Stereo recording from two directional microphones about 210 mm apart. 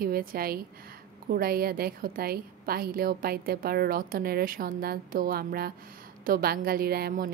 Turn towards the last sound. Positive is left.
turn(degrees=-45)  # may be behind; listen again after turning